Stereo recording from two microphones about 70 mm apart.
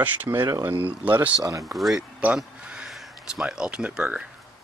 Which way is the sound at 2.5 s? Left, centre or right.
Centre.